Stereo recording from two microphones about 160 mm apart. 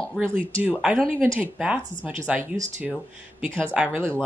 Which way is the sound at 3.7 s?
10° right (ahead or behind).